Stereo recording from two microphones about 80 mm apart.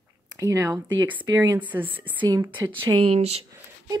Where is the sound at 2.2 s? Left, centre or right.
Right.